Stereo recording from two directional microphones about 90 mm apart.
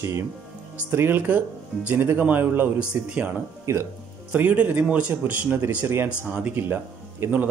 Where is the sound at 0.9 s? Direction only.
25° right (ahead or behind).